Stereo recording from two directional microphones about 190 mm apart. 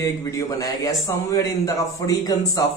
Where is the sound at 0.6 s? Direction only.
20° left (ahead or behind).